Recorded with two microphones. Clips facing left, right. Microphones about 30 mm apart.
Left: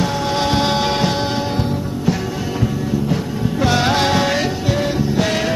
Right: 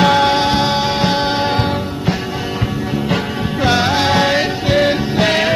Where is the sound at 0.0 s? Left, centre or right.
Right.